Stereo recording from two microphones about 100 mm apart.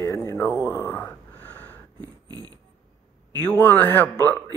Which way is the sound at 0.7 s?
20° left (ahead or behind).